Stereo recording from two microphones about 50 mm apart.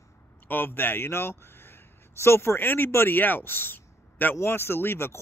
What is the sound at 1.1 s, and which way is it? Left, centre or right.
Speech, left.